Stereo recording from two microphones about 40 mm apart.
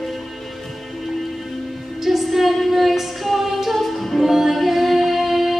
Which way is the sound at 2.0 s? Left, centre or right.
Centre.